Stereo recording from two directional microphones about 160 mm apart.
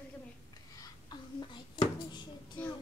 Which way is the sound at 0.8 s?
25° left (ahead or behind).